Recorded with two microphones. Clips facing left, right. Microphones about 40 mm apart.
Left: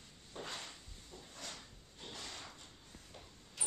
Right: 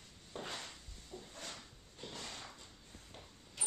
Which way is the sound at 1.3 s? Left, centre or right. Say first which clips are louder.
Left 1 dB; right.